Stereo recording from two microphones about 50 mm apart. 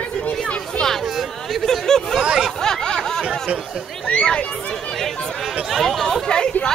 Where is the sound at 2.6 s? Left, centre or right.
Centre.